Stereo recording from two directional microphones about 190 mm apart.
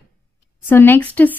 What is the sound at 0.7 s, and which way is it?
Speech, 10° left (ahead or behind).